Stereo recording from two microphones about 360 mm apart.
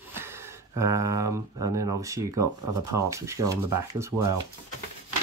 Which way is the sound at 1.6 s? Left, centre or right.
Right.